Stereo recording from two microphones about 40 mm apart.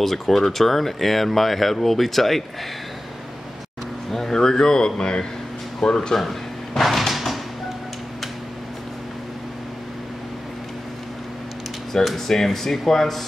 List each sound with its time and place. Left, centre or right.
0.0 s speech: centre
4.1 s speech: centre
6.1 s slam: centre
11.9 s speech: centre